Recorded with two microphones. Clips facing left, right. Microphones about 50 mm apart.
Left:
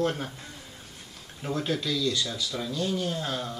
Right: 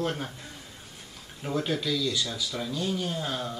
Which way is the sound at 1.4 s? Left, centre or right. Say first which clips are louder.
Even; centre.